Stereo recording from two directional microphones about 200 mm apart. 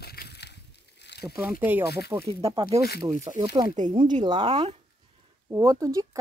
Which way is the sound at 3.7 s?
35° right (ahead or behind).